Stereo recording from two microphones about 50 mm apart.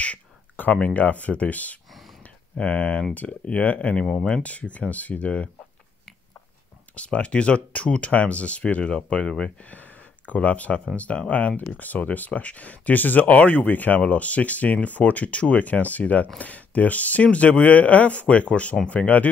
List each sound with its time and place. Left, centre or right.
0.0 s speech: left
4.0 s speech: centre
4.3 s speech: left
7.0 s speech: left
9.6 s speech: left